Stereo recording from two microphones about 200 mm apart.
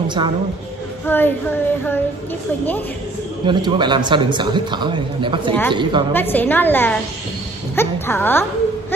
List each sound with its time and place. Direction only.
1.0 s child singing: 10° left (ahead or behind)
3.4 s a man's voice: 25° right (ahead or behind)
6.1 s child singing: 10° left (ahead or behind)
7.7 s a woman's voice: 10° left (ahead or behind)